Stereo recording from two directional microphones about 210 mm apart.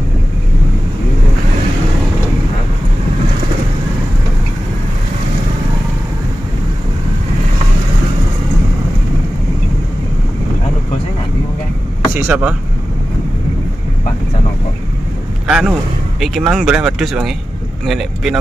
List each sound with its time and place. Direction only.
12.1 s speech: 5° right (ahead or behind)
15.4 s a man's voice: 5° right (ahead or behind)